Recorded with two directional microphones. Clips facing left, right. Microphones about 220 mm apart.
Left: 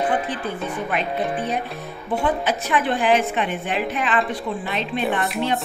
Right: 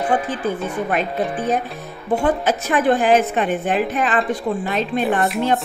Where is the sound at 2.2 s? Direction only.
45° right (ahead or behind).